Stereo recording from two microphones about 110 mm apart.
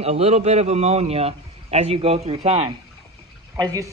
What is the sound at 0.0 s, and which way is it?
A man's voice, 65° right (ahead or behind).